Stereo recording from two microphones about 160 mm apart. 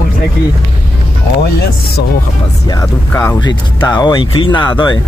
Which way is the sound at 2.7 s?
15° left (ahead or behind).